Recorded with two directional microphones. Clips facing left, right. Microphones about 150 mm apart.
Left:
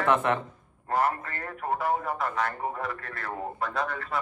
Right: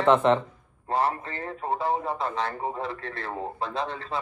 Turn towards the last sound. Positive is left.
turn(degrees=-25)  # may be behind; listen again after turning